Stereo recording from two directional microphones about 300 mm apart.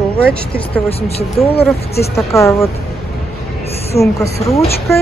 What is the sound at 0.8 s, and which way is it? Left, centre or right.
Speech, centre.